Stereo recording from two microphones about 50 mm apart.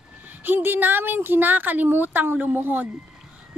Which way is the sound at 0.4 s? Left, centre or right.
Right.